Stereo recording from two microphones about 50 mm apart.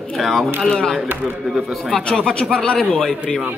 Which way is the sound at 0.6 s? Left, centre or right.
Centre.